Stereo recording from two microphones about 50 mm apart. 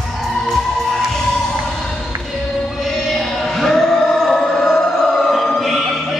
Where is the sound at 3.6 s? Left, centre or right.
Centre.